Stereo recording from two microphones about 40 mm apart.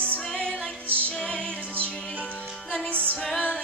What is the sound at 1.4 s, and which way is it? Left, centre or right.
Music, left.